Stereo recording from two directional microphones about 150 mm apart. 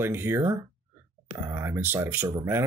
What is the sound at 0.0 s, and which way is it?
Speech, 15° right (ahead or behind).